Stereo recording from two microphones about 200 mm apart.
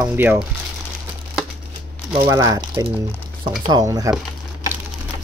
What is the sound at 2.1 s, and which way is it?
Speech, 15° right (ahead or behind).